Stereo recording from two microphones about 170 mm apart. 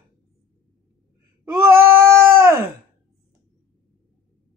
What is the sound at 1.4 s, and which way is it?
Bleat, 15° right (ahead or behind).